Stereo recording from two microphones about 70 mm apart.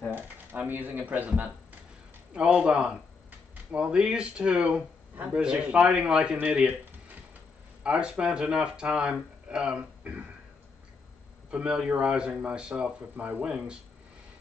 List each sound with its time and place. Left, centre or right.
0.1 s speech: right
10.1 s a sound: right
11.5 s speech: centre